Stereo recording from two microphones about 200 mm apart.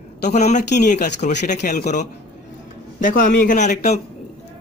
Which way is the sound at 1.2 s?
40° left (ahead or behind).